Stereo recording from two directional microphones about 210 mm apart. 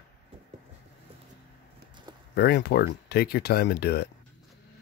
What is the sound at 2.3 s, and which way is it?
Speech, 50° left (ahead or behind).